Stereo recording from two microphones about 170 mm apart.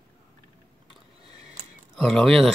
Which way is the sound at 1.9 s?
Centre (ahead or behind).